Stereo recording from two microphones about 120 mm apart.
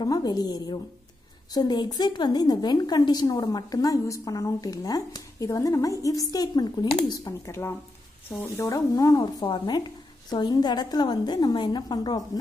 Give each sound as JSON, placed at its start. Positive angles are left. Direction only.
{"t": 0.0, "sound": "a woman's voice", "side_deg": 35}